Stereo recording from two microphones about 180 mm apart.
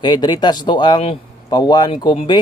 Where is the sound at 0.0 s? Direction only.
25° left (ahead or behind).